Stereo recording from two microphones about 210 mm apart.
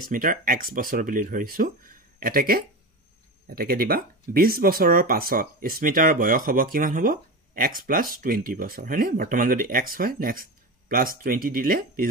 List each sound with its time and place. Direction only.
0.1 s speech: 40° right (ahead or behind)